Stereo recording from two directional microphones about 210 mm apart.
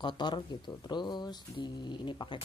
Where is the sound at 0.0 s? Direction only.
20° left (ahead or behind).